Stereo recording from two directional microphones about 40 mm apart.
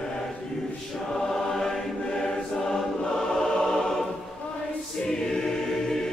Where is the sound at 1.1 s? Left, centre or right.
Centre.